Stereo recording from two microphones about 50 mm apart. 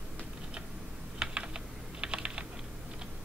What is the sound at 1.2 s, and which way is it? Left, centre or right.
Typing, centre.